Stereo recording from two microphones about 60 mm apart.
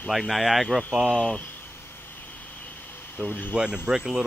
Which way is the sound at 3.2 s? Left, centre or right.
Left.